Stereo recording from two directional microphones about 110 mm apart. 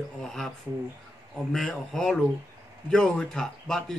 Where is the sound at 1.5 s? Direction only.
5° left (ahead or behind).